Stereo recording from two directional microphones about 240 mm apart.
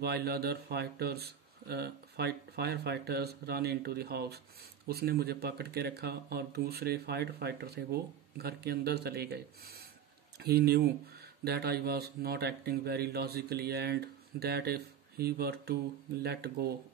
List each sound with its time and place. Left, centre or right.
0.0 s speech: right